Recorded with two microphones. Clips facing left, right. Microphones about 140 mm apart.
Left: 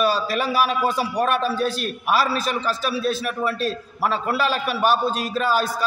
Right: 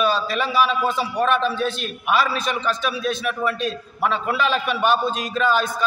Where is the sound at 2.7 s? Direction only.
35° left (ahead or behind).